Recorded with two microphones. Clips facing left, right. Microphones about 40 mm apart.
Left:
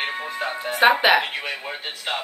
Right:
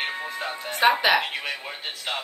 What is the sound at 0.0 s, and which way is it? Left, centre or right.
Speech, centre.